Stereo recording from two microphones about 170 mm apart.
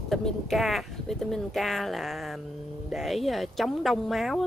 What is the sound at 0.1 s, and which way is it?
Speech, centre (ahead or behind).